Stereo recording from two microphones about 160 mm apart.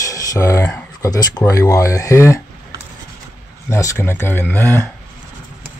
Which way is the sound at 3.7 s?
15° left (ahead or behind).